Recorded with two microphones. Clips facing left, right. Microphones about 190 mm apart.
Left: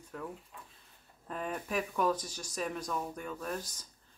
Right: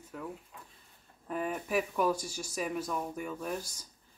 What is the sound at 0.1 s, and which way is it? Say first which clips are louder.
Speech: right 1 dB; 5° right (ahead or behind).